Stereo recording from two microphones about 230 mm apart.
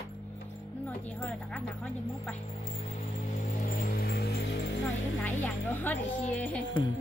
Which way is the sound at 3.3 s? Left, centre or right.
Left.